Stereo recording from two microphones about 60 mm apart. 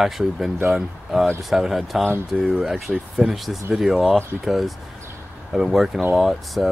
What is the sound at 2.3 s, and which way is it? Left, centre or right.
Speech, centre.